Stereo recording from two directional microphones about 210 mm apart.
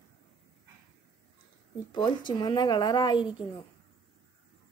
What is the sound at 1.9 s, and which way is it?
Speech, 20° left (ahead or behind).